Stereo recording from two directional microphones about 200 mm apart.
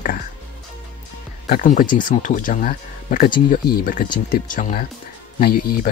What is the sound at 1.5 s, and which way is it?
Speech, 45° left (ahead or behind).